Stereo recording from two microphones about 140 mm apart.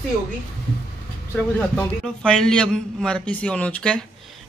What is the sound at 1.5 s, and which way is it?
A man's voice, 5° left (ahead or behind).